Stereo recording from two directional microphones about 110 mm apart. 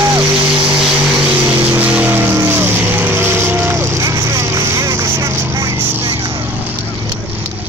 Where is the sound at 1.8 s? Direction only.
15° right (ahead or behind).